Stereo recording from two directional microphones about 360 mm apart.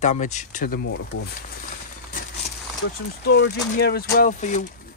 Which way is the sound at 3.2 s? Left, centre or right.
Left.